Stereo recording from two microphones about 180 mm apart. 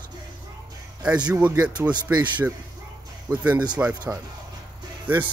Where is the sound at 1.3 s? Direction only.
5° right (ahead or behind).